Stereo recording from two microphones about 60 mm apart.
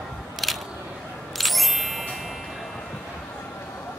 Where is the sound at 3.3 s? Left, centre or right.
Left.